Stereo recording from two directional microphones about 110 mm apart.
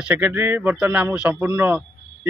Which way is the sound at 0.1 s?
20° right (ahead or behind).